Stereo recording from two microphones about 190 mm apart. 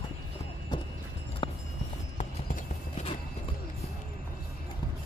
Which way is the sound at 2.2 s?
45° left (ahead or behind).